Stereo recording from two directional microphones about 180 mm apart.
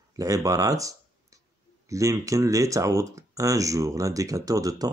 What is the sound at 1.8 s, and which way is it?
Speech, 15° right (ahead or behind).